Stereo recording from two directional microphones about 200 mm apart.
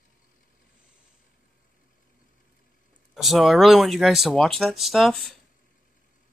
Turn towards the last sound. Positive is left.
turn(degrees=0)  # may be behind; listen again after turning